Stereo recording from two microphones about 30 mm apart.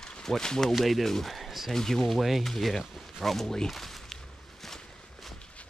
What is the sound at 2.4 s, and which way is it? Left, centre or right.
Speech, centre.